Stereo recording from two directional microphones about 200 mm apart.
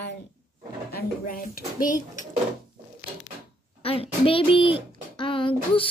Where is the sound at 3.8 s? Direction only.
30° left (ahead or behind).